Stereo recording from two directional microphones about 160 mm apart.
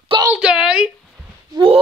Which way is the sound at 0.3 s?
5° right (ahead or behind).